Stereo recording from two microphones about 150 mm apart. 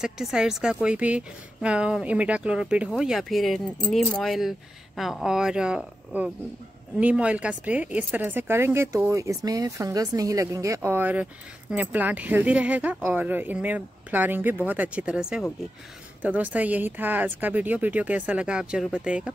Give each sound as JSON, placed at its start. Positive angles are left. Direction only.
{"t": 0.0, "sound": "a woman's voice", "side_deg": -5}